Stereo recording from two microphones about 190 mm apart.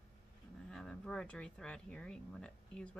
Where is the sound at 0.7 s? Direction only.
5° left (ahead or behind).